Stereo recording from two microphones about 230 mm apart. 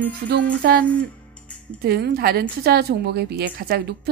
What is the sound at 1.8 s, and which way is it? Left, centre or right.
A woman's voice, right.